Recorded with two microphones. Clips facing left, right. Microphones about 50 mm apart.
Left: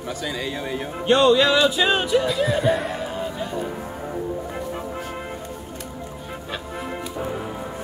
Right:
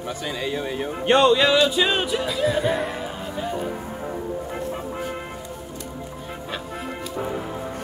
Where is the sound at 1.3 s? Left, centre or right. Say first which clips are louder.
Even; centre.